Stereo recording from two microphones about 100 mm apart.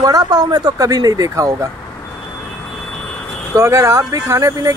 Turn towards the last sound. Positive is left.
turn(degrees=-30)  # may be behind; listen again after turning